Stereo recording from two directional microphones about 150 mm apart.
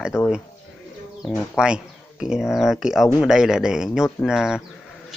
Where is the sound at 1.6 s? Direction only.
5° right (ahead or behind).